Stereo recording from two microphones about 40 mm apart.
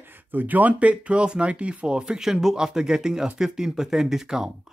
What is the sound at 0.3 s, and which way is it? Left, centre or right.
Speech, right.